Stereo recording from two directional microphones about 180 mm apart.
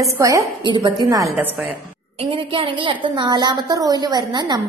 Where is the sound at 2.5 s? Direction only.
30° right (ahead or behind).